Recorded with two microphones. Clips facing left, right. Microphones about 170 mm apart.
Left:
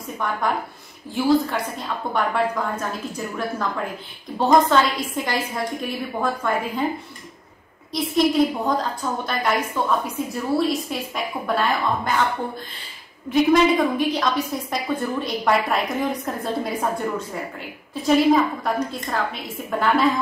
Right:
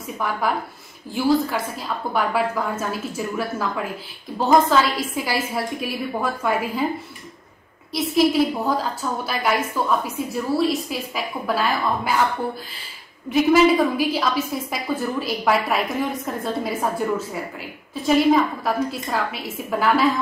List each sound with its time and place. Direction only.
0.2 s a woman's voice: 5° right (ahead or behind)
7.9 s a woman's voice: 5° right (ahead or behind)
13.3 s a woman's voice: 5° right (ahead or behind)
17.9 s a woman's voice: centre (ahead or behind)